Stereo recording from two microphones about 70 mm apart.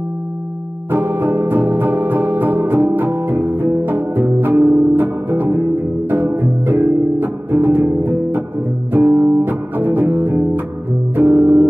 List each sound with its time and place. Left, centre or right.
0.9 s music: right
4.6 s music: right
4.9 s music: right
9.4 s music: right